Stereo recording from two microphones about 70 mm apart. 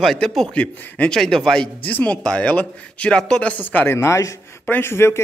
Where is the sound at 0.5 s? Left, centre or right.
Centre.